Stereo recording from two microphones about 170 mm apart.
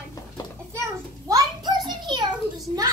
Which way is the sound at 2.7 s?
35° right (ahead or behind).